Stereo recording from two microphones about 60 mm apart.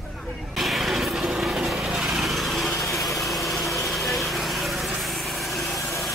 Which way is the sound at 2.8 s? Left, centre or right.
Centre.